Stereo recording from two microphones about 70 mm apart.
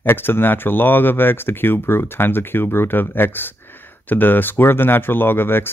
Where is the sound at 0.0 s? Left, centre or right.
Left.